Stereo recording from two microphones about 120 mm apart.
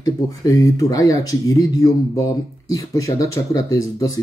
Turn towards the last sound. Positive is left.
turn(degrees=25)  # may be behind; listen again after turning